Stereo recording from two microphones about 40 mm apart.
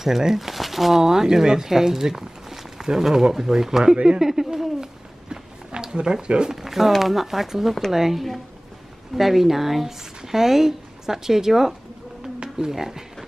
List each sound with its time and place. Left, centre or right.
0.0 s speech: centre
4.3 s a sound: centre
6.2 s speech: right
6.5 s speech: centre